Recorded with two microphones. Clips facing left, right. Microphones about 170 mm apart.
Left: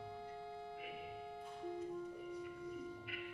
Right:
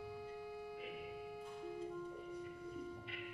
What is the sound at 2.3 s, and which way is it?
Music, 60° left (ahead or behind).